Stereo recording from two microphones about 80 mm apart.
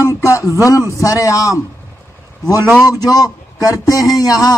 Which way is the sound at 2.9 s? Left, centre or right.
Left.